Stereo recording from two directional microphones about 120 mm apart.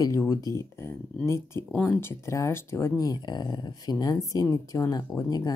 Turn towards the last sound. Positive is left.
turn(degrees=30)  # may be behind; listen again after turning